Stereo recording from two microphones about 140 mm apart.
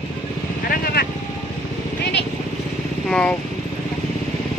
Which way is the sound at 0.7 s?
90° left.